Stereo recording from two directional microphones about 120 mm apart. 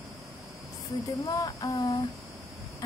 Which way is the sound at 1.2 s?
30° left (ahead or behind).